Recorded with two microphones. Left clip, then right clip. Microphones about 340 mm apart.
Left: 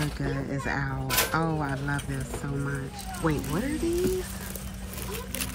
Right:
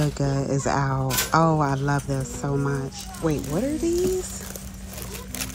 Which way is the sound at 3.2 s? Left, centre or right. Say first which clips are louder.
Right 3 dB; centre.